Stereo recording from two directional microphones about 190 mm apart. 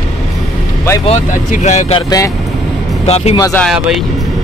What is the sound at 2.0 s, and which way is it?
Speech, 20° left (ahead or behind).